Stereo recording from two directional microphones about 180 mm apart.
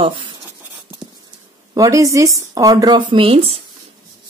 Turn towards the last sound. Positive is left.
turn(degrees=-35)  # may be behind; listen again after turning